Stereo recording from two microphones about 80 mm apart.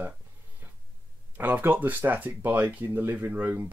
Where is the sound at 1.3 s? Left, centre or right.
Right.